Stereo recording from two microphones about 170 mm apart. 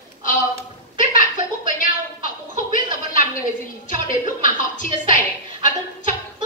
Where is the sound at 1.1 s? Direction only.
50° left (ahead or behind).